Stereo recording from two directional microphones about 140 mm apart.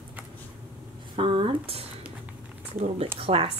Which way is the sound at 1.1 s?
40° right (ahead or behind).